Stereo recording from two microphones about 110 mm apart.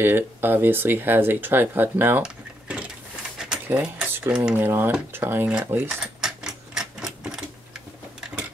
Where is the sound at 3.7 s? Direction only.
15° right (ahead or behind).